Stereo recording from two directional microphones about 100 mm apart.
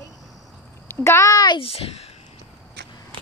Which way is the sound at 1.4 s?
65° left (ahead or behind).